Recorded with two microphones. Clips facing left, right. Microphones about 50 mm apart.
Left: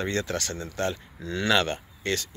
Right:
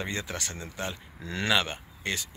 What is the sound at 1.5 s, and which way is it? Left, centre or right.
Speech, centre.